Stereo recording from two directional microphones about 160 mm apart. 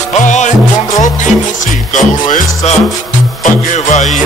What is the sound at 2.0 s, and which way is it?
Music, 50° left (ahead or behind).